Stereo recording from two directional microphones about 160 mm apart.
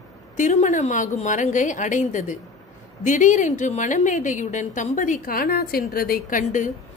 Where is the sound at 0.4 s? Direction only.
50° left (ahead or behind).